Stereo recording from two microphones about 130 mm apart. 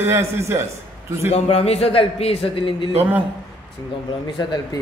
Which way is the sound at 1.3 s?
50° left (ahead or behind).